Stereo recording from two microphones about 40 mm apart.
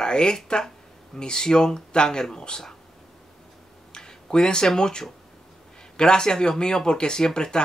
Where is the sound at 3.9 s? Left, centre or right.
Centre.